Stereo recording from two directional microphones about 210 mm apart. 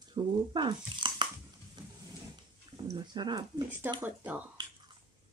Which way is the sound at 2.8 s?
20° right (ahead or behind).